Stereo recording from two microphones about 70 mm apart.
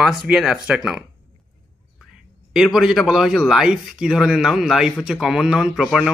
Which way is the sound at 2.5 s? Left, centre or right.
Centre.